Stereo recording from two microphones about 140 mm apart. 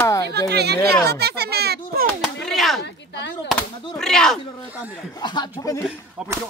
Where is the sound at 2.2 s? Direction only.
Centre (ahead or behind).